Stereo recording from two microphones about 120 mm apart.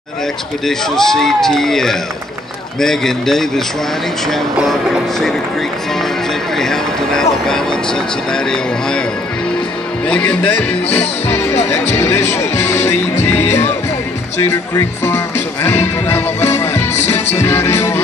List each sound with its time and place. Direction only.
0.7 s speech: 5° left (ahead or behind)
6.5 s speech: 5° left (ahead or behind)
10.0 s speech: 10° left (ahead or behind)